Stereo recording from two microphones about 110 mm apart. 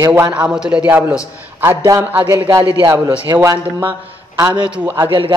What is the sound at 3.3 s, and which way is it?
Speech, 20° right (ahead or behind).